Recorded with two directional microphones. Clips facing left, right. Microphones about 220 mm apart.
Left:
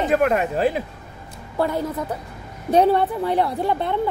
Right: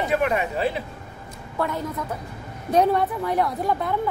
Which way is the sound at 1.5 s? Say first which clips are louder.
Left 4 dB; 30° left (ahead or behind).